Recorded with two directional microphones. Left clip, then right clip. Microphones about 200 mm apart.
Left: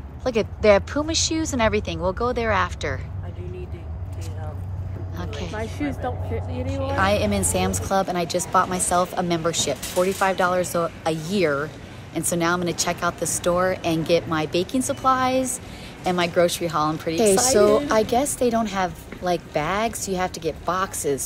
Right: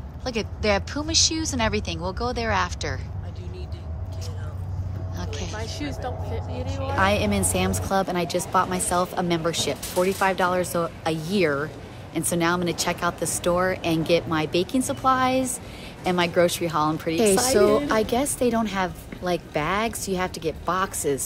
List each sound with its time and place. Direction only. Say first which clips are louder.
0.2 s a woman's voice: left 6 dB; 10° right (ahead or behind)
5.1 s speech: left 2 dB; 10° right (ahead or behind)
5.6 s a woman's voice: left 6 dB; 35° left (ahead or behind)
7.0 s a woman's voice: even; 10° right (ahead or behind)